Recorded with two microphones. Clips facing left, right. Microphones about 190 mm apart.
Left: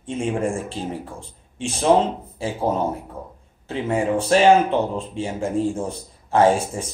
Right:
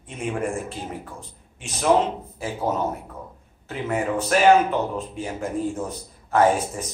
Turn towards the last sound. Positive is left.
turn(degrees=30)  # may be behind; listen again after turning